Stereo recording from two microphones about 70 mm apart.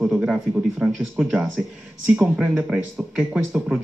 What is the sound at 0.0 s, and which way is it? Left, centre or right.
Speech, centre.